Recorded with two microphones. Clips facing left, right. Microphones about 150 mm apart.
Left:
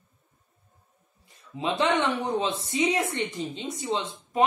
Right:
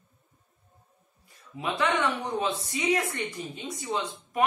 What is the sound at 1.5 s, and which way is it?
Speech, 20° left (ahead or behind).